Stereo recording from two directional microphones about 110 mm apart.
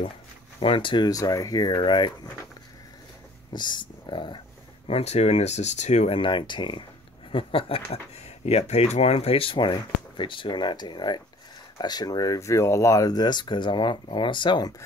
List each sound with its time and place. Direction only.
0.6 s speech: 50° left (ahead or behind)
3.5 s speech: 45° left (ahead or behind)
4.8 s speech: 70° left (ahead or behind); by 6.1 s 90° left
6.1 s speech: 45° left (ahead or behind)
9.6 s speech: 45° left (ahead or behind)